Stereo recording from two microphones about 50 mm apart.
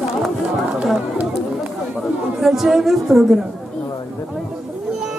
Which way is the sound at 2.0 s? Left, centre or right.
Centre.